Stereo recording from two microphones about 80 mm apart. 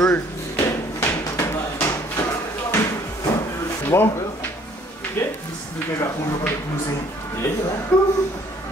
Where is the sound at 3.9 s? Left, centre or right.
Left.